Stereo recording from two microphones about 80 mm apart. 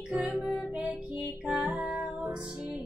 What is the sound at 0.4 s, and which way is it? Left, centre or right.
Music, centre.